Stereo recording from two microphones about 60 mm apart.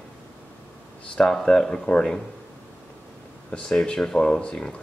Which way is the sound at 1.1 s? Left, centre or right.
Centre.